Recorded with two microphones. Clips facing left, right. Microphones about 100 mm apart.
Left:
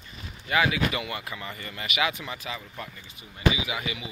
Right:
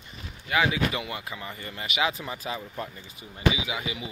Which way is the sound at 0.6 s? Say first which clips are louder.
Even; 30° right (ahead or behind).